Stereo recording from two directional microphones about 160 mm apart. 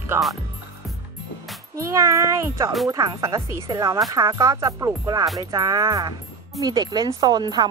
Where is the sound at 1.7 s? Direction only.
20° right (ahead or behind).